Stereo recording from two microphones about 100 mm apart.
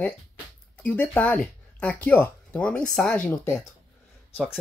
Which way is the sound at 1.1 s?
15° left (ahead or behind).